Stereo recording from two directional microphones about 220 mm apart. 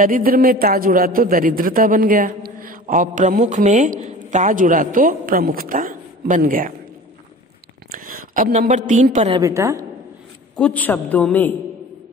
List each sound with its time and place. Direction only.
0.0 s a man's voice: 40° right (ahead or behind)
7.9 s a man's voice: 40° right (ahead or behind)
9.4 s a woman's voice: 15° right (ahead or behind)
10.5 s a woman's voice: 5° left (ahead or behind)